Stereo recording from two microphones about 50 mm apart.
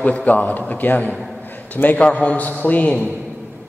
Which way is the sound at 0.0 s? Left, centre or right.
Left.